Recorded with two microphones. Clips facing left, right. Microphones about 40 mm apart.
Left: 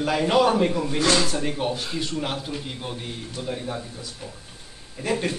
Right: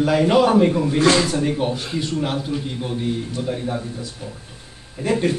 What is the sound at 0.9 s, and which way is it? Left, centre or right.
Speech, right.